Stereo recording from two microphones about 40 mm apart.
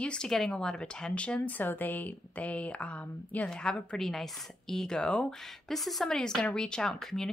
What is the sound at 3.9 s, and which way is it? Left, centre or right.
Speech, centre.